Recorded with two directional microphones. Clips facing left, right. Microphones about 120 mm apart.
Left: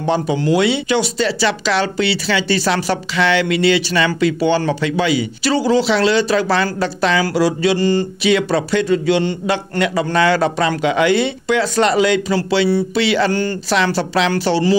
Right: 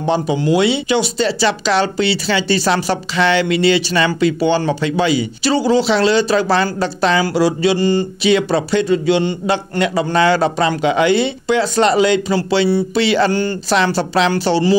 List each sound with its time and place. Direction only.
0.0 s speech: 20° right (ahead or behind)